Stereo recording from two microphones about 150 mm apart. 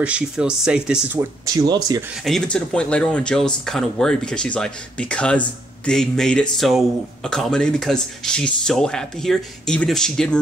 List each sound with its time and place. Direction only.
0.0 s speech: 5° right (ahead or behind)
1.4 s speech: 25° right (ahead or behind)
2.2 s speech: 5° left (ahead or behind)